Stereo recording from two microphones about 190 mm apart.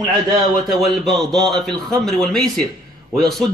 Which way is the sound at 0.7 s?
Centre (ahead or behind).